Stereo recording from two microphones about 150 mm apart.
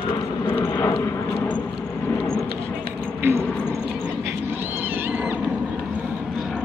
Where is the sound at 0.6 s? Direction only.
15° left (ahead or behind).